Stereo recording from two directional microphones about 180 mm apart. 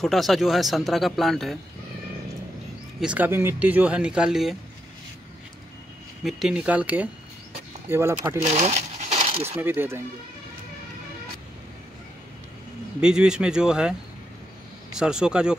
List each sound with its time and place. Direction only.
0.0 s speech: centre (ahead or behind)
3.0 s speech: 10° right (ahead or behind)
6.2 s speech: 5° right (ahead or behind)
8.4 s speech: 40° right (ahead or behind)
9.2 s a sound: 35° right (ahead or behind)
9.6 s speech: 10° right (ahead or behind)
13.0 s speech: 5° right (ahead or behind)
15.0 s speech: 5° right (ahead or behind)